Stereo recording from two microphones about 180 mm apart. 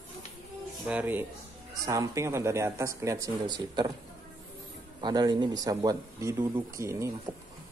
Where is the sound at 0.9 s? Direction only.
10° right (ahead or behind).